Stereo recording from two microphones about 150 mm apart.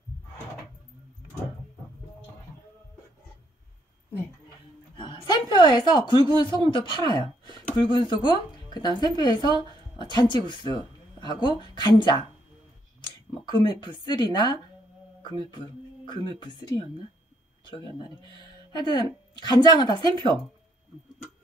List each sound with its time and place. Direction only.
4.9 s a woman's voice: 35° left (ahead or behind)
13.5 s speech: 30° left (ahead or behind)